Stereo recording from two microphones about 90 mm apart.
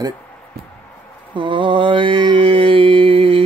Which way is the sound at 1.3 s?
65° right (ahead or behind).